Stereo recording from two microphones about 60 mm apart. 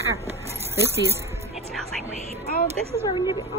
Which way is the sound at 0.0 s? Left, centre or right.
Right.